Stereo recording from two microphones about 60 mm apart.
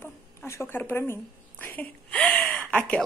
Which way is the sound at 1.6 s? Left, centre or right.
Left.